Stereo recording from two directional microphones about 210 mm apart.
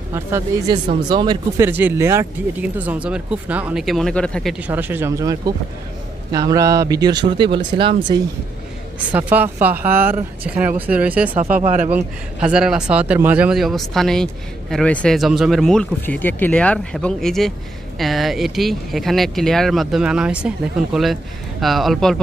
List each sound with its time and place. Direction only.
0.1 s speech: 15° right (ahead or behind)
9.1 s speech: 10° right (ahead or behind)
11.6 s a man's voice: 35° right (ahead or behind)
11.9 s speech: 5° right (ahead or behind)